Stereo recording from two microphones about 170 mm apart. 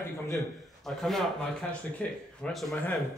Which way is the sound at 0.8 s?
Centre (ahead or behind).